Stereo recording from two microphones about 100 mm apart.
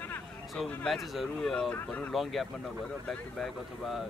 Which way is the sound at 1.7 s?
15° left (ahead or behind).